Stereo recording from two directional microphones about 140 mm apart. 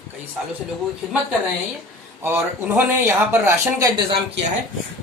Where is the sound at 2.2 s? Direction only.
15° right (ahead or behind).